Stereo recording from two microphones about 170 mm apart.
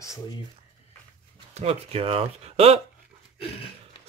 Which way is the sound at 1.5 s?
35° right (ahead or behind).